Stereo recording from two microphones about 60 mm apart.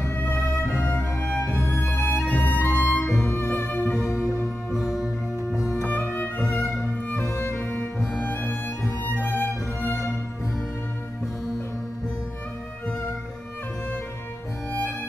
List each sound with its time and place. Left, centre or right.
0.0 s music: left
4.7 s music: centre
6.1 s music: left
8.1 s music: left
9.0 s music: left